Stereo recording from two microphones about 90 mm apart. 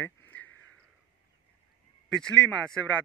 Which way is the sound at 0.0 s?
20° left (ahead or behind).